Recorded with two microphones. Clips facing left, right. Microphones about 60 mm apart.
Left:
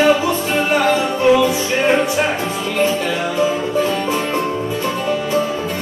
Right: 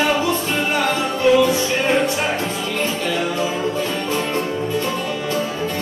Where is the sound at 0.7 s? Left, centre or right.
Centre.